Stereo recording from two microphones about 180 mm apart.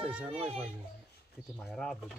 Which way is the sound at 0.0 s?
5° right (ahead or behind).